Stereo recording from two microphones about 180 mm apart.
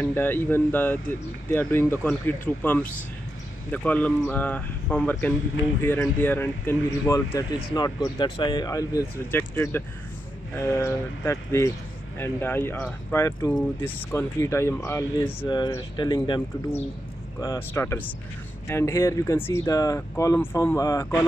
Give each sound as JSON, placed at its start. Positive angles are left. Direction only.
{"t": 0.0, "sound": "speech", "side_deg": 10}